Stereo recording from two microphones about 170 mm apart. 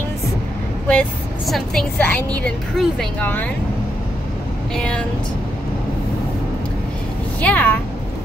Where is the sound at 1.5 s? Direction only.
Centre (ahead or behind).